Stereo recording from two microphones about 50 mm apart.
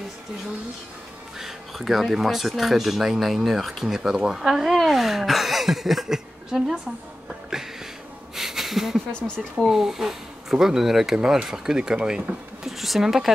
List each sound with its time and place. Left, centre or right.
1.4 s speech: centre
8.4 s a sound: centre
9.7 s speech: centre
11.1 s speech: centre
12.6 s speech: centre